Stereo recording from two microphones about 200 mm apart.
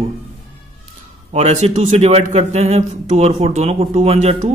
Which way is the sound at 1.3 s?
30° right (ahead or behind).